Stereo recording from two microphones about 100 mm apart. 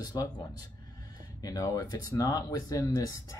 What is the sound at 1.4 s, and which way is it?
Speech, 35° left (ahead or behind).